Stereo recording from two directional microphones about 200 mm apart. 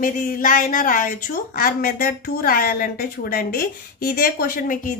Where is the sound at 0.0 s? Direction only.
45° left (ahead or behind).